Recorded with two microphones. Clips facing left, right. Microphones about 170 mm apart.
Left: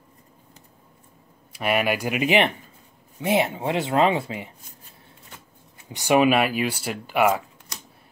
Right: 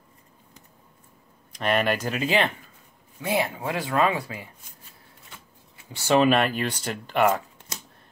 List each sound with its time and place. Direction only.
1.5 s speech: 10° left (ahead or behind)
5.9 s speech: 15° left (ahead or behind)